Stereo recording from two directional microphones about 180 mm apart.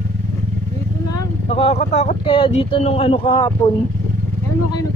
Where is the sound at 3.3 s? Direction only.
20° left (ahead or behind).